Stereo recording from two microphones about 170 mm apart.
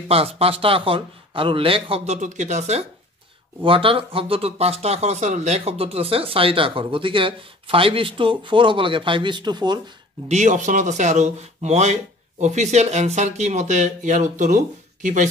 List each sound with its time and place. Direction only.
0.1 s speech: 35° right (ahead or behind)
10.2 s speech: 45° right (ahead or behind)